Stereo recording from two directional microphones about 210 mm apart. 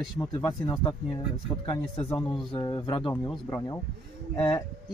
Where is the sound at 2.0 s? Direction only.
20° left (ahead or behind).